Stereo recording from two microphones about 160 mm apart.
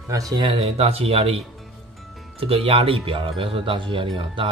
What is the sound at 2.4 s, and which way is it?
Speech, 35° right (ahead or behind).